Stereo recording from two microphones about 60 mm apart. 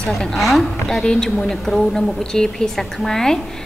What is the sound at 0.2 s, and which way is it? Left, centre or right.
A woman's voice, centre.